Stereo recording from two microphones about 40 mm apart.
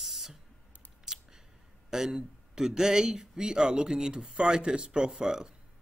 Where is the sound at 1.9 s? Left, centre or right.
Centre.